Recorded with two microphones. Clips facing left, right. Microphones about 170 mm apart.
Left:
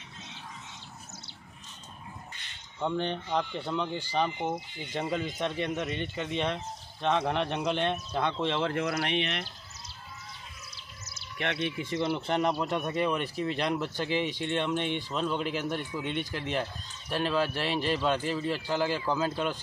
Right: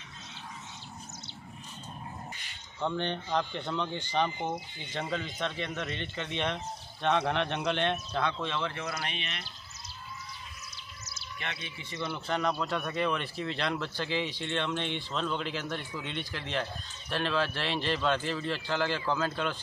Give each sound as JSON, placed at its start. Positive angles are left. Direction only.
{"t": 2.8, "sound": "speech", "side_deg": 5}
{"t": 8.2, "sound": "speech", "side_deg": 25}
{"t": 8.8, "sound": "speech", "side_deg": 75}
{"t": 11.1, "sound": "bird", "side_deg": 60}
{"t": 12.3, "sound": "speech", "side_deg": 20}